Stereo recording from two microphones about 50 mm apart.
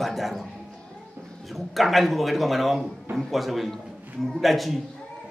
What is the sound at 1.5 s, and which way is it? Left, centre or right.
A man's voice, centre.